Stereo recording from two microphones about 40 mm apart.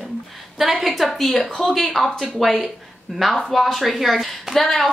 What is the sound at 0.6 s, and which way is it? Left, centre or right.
Speech, centre.